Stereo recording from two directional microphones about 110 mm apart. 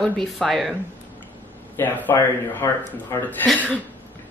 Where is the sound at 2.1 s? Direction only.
25° left (ahead or behind).